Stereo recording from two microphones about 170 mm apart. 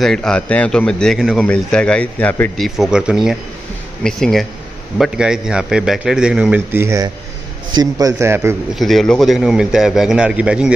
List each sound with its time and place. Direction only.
0.0 s speech: 5° left (ahead or behind)
2.6 s a man's voice: 5° right (ahead or behind)
8.7 s speech: centre (ahead or behind)